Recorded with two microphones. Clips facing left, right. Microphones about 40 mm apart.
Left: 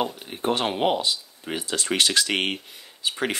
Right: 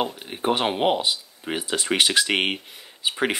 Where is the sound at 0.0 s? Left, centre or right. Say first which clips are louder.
Right 1 dB; centre.